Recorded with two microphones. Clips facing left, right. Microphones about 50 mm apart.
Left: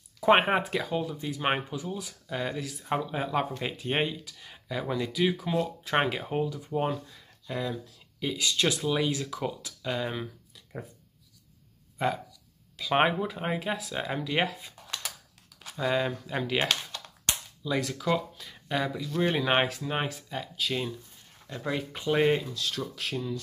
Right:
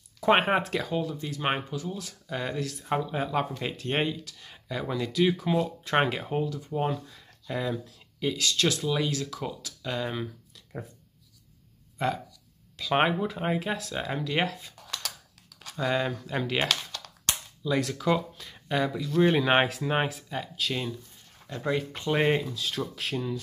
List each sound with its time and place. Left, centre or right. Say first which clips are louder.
0.2 s speech: even; centre
2.2 s speech: right 1 dB; centre
7.1 s a sound: right 2 dB; centre
7.8 s speech: right 3 dB; centre
8.4 s speech: left 1 dB; centre
12.0 s speech: even; centre
14.8 s a sound: left 1 dB; left
15.6 s speech: even; centre
16.6 s typing: even; centre
17.6 s speech: right 2 dB; centre
22.1 s speech: even; centre